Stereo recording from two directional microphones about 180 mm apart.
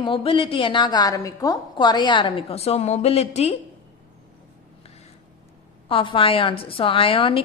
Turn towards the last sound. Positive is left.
turn(degrees=30)  # may be behind; listen again after turning